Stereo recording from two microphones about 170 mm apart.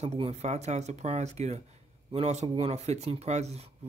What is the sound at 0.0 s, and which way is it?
Speech, 40° right (ahead or behind).